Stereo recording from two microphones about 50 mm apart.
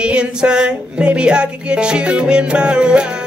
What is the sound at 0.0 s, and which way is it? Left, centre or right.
Music, centre.